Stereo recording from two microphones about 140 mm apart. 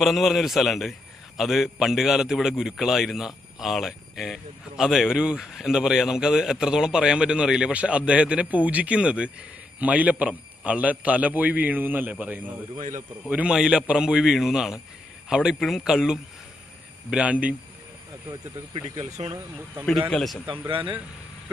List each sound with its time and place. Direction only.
0.0 s a man's voice: centre (ahead or behind)
12.7 s speech: 65° right (ahead or behind)
13.3 s a man's voice: 5° right (ahead or behind)
18.3 s speech: 35° right (ahead or behind)
19.9 s a man's voice: centre (ahead or behind)
20.4 s speech: 35° right (ahead or behind)